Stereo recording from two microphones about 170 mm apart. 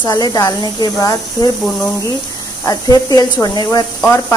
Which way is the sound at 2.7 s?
20° left (ahead or behind).